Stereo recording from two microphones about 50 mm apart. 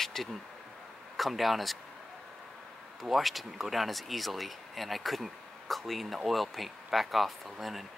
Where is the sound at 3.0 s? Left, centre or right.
Centre.